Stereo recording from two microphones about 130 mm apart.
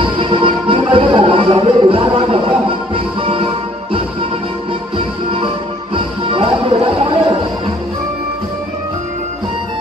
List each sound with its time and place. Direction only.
0.0 s music: 40° right (ahead or behind)
4.9 s music: 45° right (ahead or behind)